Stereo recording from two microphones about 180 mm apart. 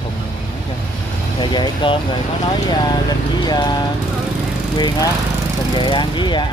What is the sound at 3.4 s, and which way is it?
Speech, 25° left (ahead or behind).